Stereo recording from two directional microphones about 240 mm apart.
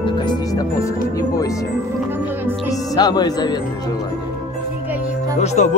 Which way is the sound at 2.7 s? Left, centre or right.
Centre.